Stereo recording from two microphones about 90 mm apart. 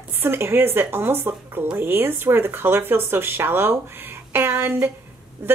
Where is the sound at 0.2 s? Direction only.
25° right (ahead or behind).